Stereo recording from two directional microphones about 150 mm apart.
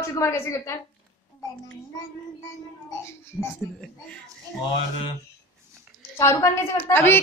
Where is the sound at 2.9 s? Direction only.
15° left (ahead or behind).